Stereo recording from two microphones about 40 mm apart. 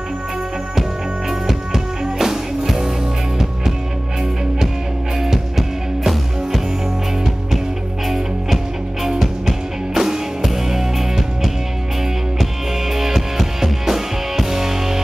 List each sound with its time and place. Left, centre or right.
1.5 s music: centre
5.2 s music: centre
9.0 s music: centre
12.9 s music: centre